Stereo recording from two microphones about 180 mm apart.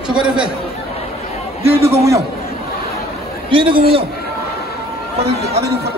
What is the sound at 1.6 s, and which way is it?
Speech, 35° right (ahead or behind).